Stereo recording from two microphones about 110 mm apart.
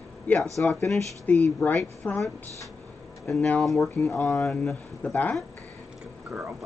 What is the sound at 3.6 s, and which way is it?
Speech, centre (ahead or behind).